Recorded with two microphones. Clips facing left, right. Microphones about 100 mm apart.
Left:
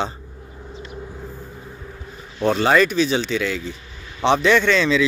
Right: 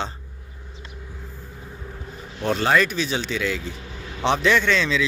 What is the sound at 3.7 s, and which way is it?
Vehicle, 85° right.